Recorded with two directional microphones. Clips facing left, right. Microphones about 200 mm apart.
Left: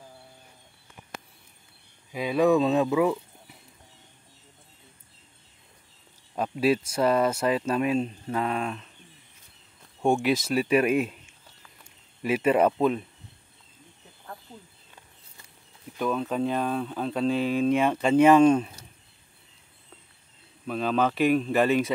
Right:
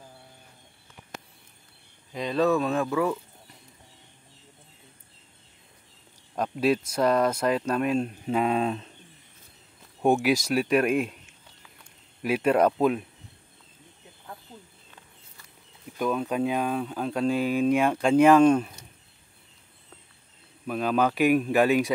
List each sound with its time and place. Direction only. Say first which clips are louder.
2.1 s speech: left 2 dB; 10° left (ahead or behind)
6.3 s speech: even; 5° left (ahead or behind)
8.2 s speech: right 4 dB; 15° right (ahead or behind)
10.0 s speech: right 1 dB; centre (ahead or behind)
16.0 s speech: right 1 dB; 5° right (ahead or behind)
20.6 s speech: right 1 dB; 5° right (ahead or behind)